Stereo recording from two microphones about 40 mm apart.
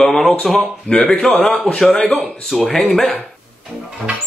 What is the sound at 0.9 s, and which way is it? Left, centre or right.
Speech, left.